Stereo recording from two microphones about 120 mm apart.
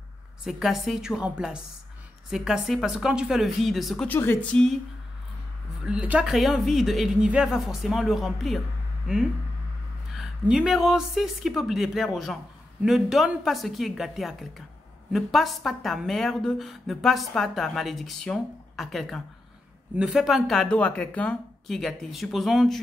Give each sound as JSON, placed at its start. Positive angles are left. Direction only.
{"t": 0.4, "sound": "a woman's voice", "side_deg": 0}
{"t": 4.1, "sound": "speech", "side_deg": 15}
{"t": 5.9, "sound": "a woman's voice", "side_deg": -10}